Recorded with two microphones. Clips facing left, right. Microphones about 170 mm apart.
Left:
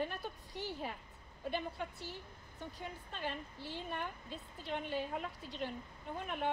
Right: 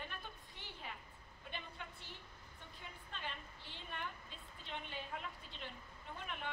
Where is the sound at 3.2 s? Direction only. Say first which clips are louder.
Left 9 dB; 40° left (ahead or behind).